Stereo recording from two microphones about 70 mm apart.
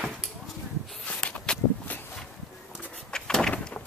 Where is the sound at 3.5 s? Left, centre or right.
Left.